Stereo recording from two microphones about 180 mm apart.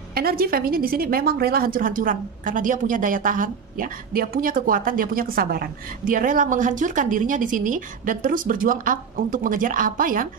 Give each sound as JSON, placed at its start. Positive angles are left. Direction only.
{"t": 0.1, "sound": "a woman's voice", "side_deg": -60}